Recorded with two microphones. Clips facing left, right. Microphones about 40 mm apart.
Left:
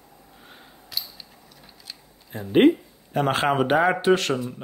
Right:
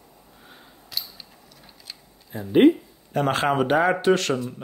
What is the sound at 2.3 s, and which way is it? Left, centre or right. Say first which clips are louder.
Speech: right 1 dB; left.